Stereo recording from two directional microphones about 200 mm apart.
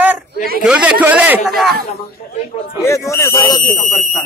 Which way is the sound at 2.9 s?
15° left (ahead or behind).